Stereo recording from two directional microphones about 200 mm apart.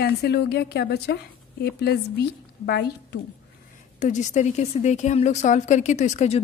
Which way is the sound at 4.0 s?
40° left (ahead or behind).